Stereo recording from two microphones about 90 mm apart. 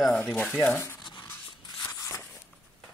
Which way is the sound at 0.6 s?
20° left (ahead or behind).